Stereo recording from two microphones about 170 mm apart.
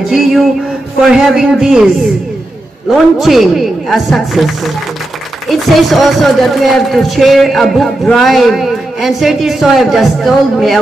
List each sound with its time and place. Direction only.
0.1 s a sound: centre (ahead or behind)
1.0 s a man's voice: centre (ahead or behind)
2.9 s a man's voice: centre (ahead or behind)